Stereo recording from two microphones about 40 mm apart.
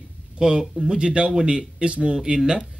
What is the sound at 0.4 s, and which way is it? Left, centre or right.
Speech, centre.